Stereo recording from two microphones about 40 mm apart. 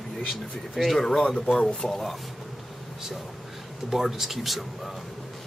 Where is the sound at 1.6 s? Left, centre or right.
Centre.